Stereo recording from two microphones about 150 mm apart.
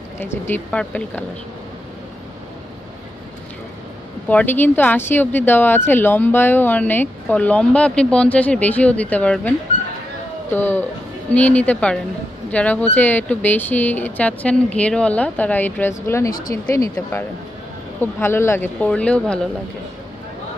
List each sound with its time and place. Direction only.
0.2 s speech: 15° left (ahead or behind)
4.3 s speech: 10° left (ahead or behind)
10.5 s speech: 10° left (ahead or behind)
16.3 s speech: 70° left (ahead or behind)
16.7 s speech: 20° left (ahead or behind)